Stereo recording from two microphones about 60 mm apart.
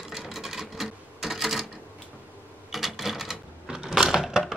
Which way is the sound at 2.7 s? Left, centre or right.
Centre.